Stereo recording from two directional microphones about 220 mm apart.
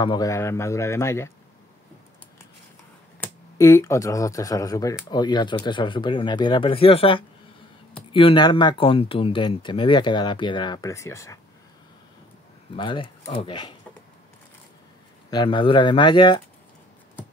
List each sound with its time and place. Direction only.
0.0 s speech: 20° left (ahead or behind)
3.5 s speech: 15° left (ahead or behind)
12.7 s speech: 20° left (ahead or behind)
15.3 s speech: 20° left (ahead or behind)